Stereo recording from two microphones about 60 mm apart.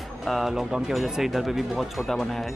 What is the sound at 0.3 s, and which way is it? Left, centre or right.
Speech, centre.